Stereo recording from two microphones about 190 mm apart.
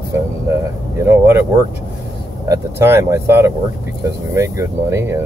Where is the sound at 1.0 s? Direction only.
15° right (ahead or behind).